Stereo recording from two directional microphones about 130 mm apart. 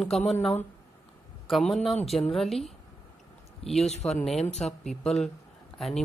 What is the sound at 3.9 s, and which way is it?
Speech, 55° left (ahead or behind).